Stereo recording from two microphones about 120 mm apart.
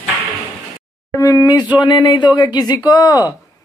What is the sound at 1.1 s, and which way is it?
Speech, 30° left (ahead or behind).